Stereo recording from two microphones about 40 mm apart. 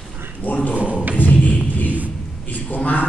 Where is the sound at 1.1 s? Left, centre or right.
Left.